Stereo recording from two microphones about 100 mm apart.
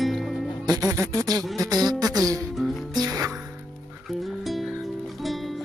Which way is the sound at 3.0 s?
35° right (ahead or behind).